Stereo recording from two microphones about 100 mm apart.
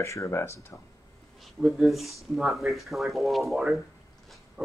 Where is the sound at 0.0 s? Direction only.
30° left (ahead or behind).